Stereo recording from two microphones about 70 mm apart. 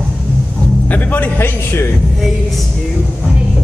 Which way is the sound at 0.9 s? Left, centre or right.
Left.